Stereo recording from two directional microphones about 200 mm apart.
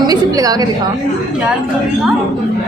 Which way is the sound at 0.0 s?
20° right (ahead or behind).